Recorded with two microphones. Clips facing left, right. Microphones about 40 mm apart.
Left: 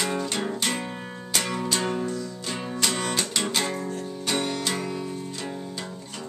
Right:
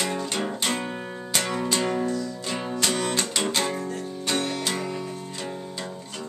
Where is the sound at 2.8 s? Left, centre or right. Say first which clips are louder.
Right 1 dB; centre.